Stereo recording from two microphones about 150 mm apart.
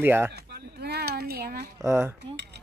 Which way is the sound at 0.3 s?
90° right.